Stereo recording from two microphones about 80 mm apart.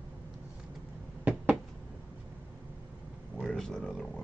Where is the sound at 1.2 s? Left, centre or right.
Centre.